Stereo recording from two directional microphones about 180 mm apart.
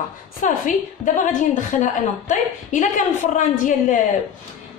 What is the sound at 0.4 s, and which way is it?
A woman's voice, 45° left (ahead or behind).